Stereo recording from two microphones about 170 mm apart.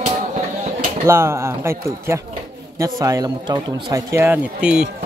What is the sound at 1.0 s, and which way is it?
A man's voice, 15° right (ahead or behind).